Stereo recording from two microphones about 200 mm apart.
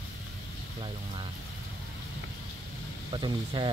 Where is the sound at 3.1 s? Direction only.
25° right (ahead or behind).